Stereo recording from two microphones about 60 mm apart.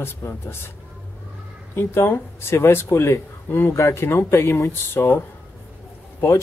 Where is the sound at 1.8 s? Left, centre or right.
Left.